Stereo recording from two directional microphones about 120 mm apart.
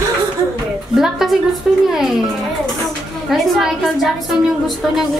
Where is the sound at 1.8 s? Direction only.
5° right (ahead or behind).